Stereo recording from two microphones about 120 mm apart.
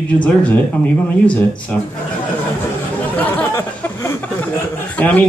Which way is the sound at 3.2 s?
15° left (ahead or behind).